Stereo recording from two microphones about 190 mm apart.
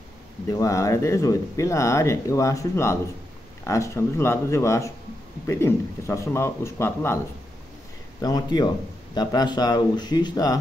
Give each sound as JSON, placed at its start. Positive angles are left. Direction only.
{"t": 0.5, "sound": "speech", "side_deg": 15}
{"t": 8.2, "sound": "a man's voice", "side_deg": 20}